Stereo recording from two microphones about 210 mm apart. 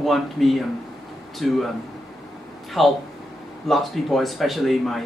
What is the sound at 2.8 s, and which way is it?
Speech, centre (ahead or behind).